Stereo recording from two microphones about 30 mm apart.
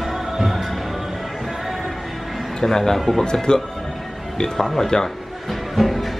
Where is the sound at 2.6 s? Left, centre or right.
Centre.